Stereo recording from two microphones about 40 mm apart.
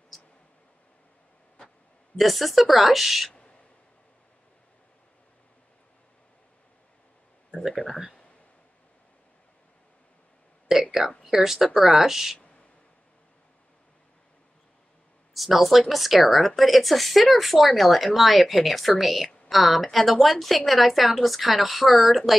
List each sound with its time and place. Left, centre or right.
2.1 s speech: centre
3.3 s owl: left
7.7 s speech: centre
10.7 s a sound: centre
11.2 s speech: centre
15.3 s speech: centre